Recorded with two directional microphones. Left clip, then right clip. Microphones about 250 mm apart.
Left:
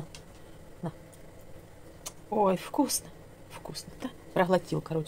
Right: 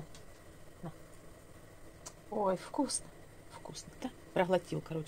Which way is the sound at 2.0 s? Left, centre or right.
Centre.